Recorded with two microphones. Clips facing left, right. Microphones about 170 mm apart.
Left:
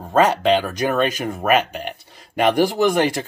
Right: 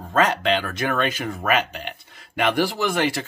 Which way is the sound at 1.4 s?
15° left (ahead or behind).